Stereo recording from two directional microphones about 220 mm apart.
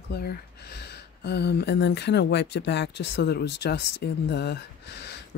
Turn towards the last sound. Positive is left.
turn(degrees=50)  # may be behind; listen again after turning